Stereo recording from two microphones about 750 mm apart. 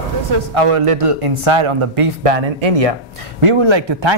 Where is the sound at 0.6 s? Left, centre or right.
Right.